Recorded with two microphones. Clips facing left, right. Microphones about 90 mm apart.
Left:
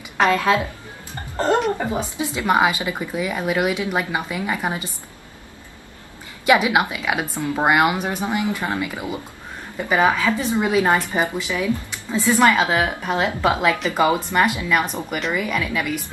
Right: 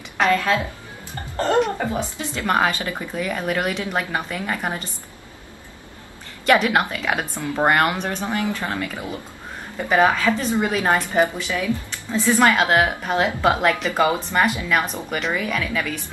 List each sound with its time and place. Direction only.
0.3 s a woman's voice: 20° left (ahead or behind)
6.4 s a woman's voice: 10° left (ahead or behind)
11.1 s speech: 15° left (ahead or behind)
12.3 s a woman's voice: centre (ahead or behind)
13.9 s a woman's voice: 15° left (ahead or behind)
15.0 s a woman's voice: 5° left (ahead or behind)